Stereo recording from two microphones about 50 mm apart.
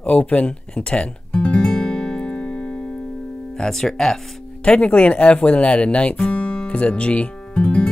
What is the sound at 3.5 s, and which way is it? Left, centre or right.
Speech, centre.